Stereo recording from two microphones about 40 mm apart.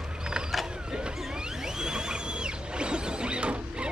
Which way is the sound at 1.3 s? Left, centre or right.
Centre.